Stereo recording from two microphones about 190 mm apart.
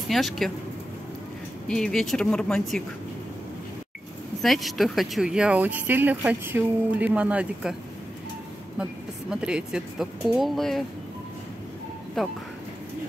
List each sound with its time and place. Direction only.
0.1 s speech: centre (ahead or behind)
1.7 s speech: 5° left (ahead or behind)
4.4 s speech: centre (ahead or behind)
9.3 s speech: 5° right (ahead or behind)
12.2 s speech: centre (ahead or behind)